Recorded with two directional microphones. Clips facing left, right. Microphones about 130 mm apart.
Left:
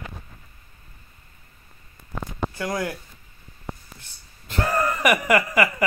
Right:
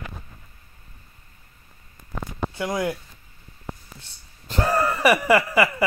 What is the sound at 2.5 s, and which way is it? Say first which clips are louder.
Speech: right 3 dB; 20° right (ahead or behind).